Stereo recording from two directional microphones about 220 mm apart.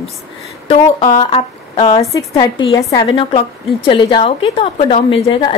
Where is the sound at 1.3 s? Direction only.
25° left (ahead or behind).